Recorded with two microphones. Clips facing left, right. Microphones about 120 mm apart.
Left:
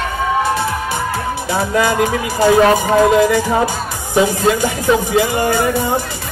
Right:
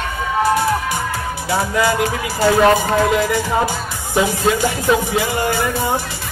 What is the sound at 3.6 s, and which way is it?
Music, 15° left (ahead or behind).